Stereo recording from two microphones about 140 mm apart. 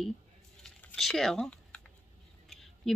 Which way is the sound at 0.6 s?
5° left (ahead or behind).